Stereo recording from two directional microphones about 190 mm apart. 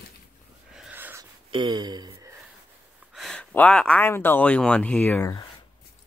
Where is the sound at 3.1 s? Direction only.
Centre (ahead or behind).